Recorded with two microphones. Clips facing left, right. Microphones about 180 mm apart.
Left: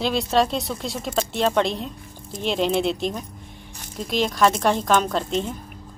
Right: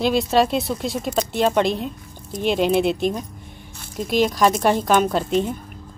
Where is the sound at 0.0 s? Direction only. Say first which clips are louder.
Right 3 dB; centre (ahead or behind).